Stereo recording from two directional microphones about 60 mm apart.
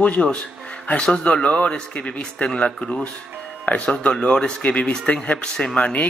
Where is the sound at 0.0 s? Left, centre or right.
Left.